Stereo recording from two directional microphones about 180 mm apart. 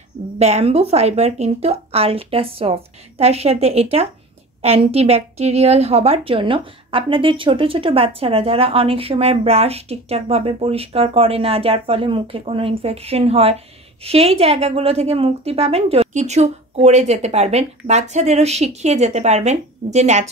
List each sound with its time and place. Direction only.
0.4 s a woman's voice: 35° right (ahead or behind)